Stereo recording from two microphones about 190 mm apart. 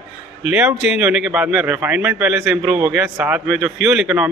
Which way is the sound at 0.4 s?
5° right (ahead or behind).